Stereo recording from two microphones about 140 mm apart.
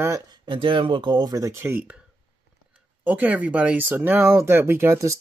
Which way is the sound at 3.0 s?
10° right (ahead or behind).